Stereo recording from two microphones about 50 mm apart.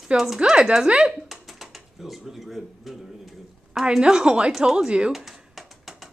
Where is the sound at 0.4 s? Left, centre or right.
Centre.